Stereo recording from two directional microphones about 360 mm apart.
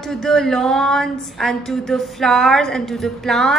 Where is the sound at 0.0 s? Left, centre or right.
Centre.